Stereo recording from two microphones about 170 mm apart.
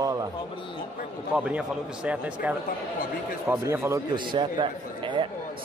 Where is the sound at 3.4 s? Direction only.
15° right (ahead or behind).